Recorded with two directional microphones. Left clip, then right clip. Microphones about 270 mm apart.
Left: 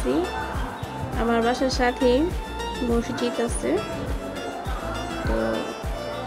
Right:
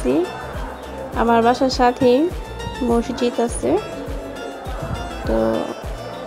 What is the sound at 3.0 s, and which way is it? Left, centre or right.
Speech, centre.